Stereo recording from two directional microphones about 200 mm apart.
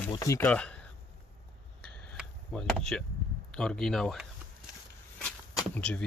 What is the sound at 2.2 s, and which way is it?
Chop, 5° left (ahead or behind).